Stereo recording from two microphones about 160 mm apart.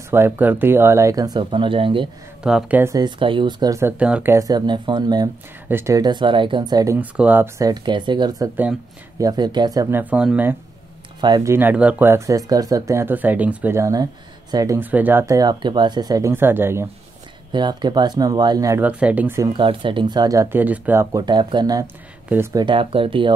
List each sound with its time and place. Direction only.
0.1 s speech: 15° right (ahead or behind); by 2.0 s 35° right (ahead or behind)
2.4 s speech: 5° right (ahead or behind)
2.8 s speech: 25° right (ahead or behind)
4.0 s speech: 10° right (ahead or behind); by 5.3 s 25° right (ahead or behind)
5.7 s speech: 15° right (ahead or behind)
7.0 s speech: 10° right (ahead or behind)
11.1 s speech: 25° right (ahead or behind)
11.5 s speech: 10° right (ahead or behind)
17.5 s speech: 25° right (ahead or behind)
18.8 s speech: 10° right (ahead or behind)
19.5 s speech: 30° right (ahead or behind); by 21.2 s 15° right (ahead or behind)
21.3 s speech: 30° right (ahead or behind)